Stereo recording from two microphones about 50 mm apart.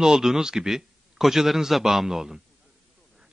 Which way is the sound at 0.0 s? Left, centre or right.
Centre.